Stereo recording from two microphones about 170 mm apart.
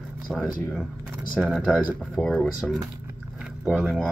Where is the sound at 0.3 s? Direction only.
5° right (ahead or behind).